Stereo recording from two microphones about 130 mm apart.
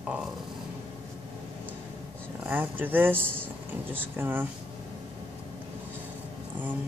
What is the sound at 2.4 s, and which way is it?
Speech, 15° right (ahead or behind).